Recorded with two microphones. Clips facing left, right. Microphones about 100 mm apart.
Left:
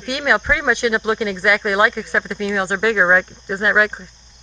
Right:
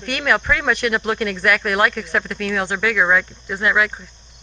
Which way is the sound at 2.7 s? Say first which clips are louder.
Left 3 dB; 25° left (ahead or behind).